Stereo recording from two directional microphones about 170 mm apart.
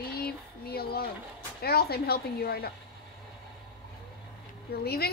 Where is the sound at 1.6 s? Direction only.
65° left (ahead or behind).